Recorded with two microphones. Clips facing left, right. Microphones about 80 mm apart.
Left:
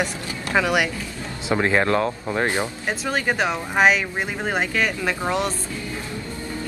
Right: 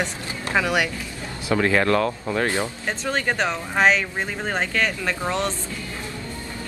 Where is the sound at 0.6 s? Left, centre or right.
Centre.